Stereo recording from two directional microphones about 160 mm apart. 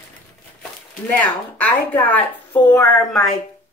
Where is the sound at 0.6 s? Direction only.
10° left (ahead or behind).